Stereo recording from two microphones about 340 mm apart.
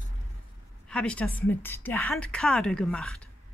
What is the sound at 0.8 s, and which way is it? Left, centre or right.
A woman's voice, centre.